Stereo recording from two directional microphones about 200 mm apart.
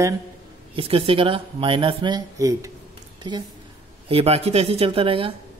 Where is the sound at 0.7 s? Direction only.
25° right (ahead or behind).